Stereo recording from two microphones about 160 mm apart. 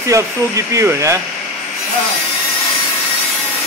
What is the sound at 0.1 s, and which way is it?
Speech, 20° right (ahead or behind).